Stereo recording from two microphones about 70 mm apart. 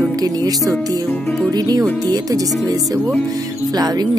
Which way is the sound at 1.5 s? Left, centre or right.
Right.